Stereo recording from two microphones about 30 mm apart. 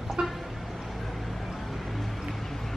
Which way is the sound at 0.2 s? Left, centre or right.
Right.